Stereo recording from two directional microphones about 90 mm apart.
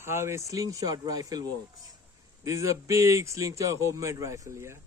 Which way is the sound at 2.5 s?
35° right (ahead or behind).